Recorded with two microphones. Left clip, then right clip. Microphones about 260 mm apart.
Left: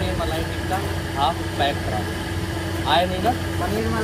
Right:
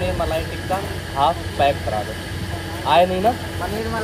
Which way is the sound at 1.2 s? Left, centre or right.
Right.